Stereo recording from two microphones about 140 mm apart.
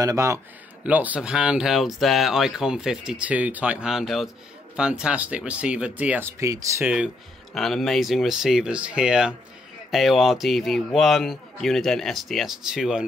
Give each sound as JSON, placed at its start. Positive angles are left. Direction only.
{"t": 0.0, "sound": "a man's voice", "side_deg": -20}
{"t": 0.8, "sound": "speech", "side_deg": -10}
{"t": 7.5, "sound": "speech", "side_deg": 0}